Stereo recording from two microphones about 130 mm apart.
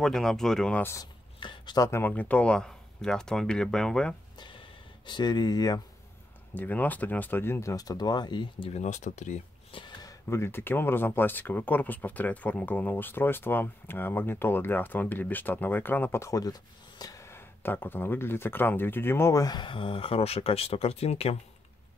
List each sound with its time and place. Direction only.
0.0 s speech: 5° left (ahead or behind)
1.4 s speech: 35° left (ahead or behind)
1.9 s speech: 15° left (ahead or behind)
4.4 s a sound: 40° left (ahead or behind)
6.5 s speech: 15° left (ahead or behind); by 8.7 s 40° left (ahead or behind)
8.7 s speech: 65° left (ahead or behind)
9.7 s a sound: 40° left (ahead or behind)
10.0 s speech: 20° left (ahead or behind); by 21.4 s 50° left (ahead or behind)